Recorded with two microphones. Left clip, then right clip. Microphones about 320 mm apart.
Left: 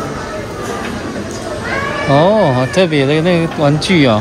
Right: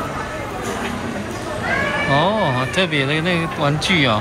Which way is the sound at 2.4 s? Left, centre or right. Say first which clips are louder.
Left 7 dB; centre.